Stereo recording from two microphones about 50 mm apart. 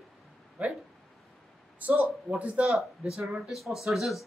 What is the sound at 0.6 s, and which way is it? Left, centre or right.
Speech, right.